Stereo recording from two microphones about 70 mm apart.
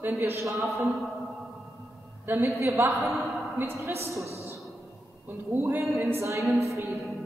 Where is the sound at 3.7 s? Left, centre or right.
Right.